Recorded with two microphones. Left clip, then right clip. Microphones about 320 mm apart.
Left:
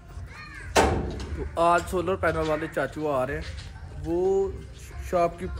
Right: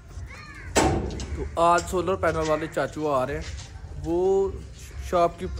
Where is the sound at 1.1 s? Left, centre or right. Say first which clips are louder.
Right 1 dB; centre.